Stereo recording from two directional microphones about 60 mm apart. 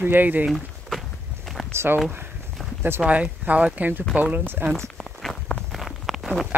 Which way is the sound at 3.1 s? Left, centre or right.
Right.